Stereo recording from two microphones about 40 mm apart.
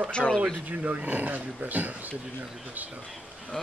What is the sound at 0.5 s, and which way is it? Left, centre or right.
Speech, right.